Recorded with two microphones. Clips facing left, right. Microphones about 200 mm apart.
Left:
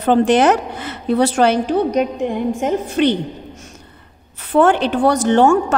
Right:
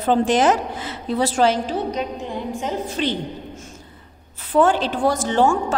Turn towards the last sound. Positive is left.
turn(degrees=65)  # may be behind; listen again after turning